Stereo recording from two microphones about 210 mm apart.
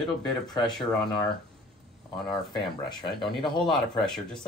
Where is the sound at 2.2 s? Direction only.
20° left (ahead or behind).